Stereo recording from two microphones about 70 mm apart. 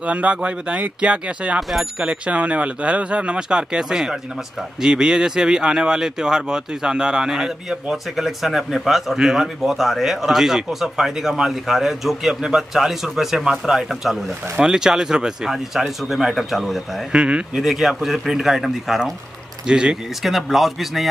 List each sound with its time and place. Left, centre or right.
0.0 s speech: centre
17.1 s speech: centre
17.6 s speech: centre